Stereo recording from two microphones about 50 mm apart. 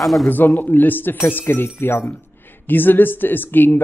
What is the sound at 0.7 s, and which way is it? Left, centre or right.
A man's voice, left.